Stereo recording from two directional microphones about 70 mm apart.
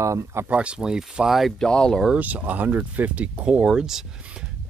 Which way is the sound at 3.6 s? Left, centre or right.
Centre.